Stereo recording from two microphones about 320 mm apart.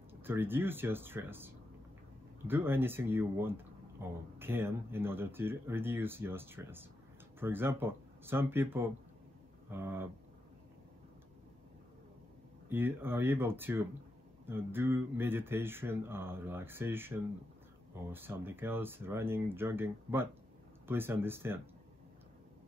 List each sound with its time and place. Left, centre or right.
0.2 s speech: centre
12.6 s speech: centre